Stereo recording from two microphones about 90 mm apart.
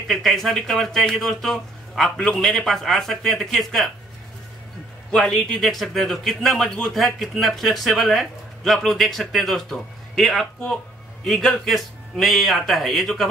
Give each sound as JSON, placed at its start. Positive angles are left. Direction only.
{"t": 0.1, "sound": "speech", "side_deg": 0}
{"t": 5.1, "sound": "speech", "side_deg": 5}